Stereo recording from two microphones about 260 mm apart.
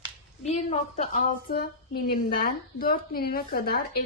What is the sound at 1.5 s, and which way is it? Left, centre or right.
A woman's voice, left.